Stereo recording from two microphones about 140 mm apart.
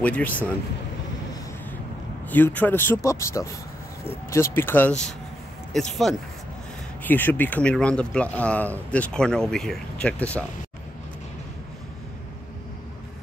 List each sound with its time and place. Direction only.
0.0 s speech: 10° left (ahead or behind)
2.2 s speech: 15° left (ahead or behind)
7.0 s speech: 15° left (ahead or behind)